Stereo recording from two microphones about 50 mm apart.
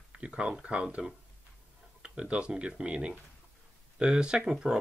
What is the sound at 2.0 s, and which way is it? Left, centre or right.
Speech, right.